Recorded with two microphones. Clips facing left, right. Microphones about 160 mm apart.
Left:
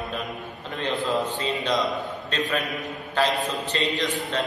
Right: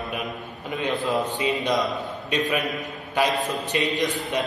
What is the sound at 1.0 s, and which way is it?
Speech, 15° right (ahead or behind).